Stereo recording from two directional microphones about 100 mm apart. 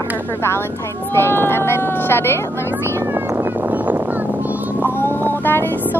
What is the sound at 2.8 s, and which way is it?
Meow, 25° right (ahead or behind).